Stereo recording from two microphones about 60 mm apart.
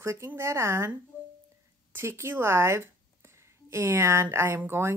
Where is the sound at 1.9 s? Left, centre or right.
Right.